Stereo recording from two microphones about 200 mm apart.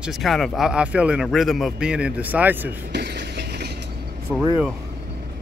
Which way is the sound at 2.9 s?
55° right (ahead or behind).